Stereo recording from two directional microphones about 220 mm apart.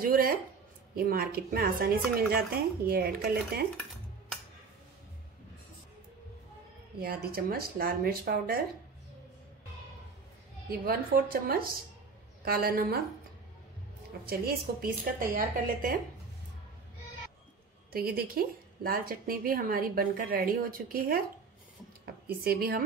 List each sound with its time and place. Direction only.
0.0 s a woman's voice: 40° right (ahead or behind)
7.0 s speech: 40° right (ahead or behind)
10.7 s speech: 40° right (ahead or behind)
14.3 s a woman's voice: 45° right (ahead or behind)
17.9 s a woman's voice: 40° right (ahead or behind)